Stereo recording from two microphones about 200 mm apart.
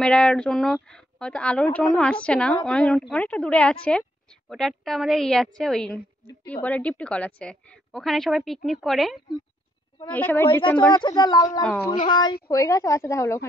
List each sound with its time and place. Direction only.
0.0 s a woman's voice: 5° left (ahead or behind)
10.9 s a woman's voice: 20° left (ahead or behind)